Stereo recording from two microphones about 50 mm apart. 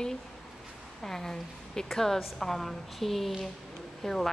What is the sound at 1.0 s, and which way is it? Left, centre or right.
A woman's voice, centre.